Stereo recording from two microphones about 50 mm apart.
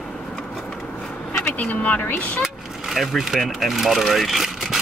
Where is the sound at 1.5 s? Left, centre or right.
Left.